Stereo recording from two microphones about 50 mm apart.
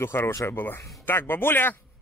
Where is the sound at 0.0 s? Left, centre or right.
Left.